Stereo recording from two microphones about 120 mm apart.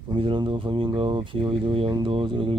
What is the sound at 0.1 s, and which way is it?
Speech, 45° right (ahead or behind).